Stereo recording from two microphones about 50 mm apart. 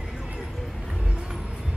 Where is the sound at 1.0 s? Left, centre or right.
Centre.